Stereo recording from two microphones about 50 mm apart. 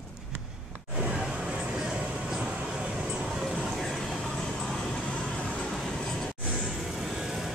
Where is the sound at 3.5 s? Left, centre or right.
Centre.